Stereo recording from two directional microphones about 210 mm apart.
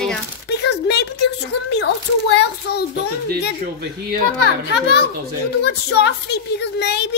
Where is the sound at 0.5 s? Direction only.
50° left (ahead or behind).